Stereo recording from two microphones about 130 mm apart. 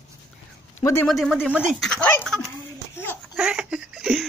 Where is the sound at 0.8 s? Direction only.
20° left (ahead or behind).